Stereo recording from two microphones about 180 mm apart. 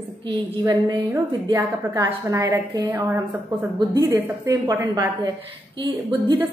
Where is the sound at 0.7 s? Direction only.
25° right (ahead or behind).